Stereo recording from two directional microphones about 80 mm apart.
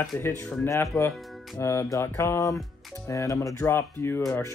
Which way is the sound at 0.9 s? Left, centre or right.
Centre.